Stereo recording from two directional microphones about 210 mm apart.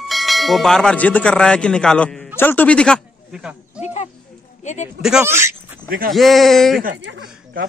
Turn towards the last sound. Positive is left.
turn(degrees=-55)  # may be behind; listen again after turning